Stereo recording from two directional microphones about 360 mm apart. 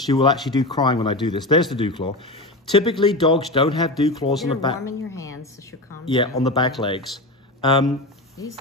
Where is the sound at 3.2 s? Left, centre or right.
Centre.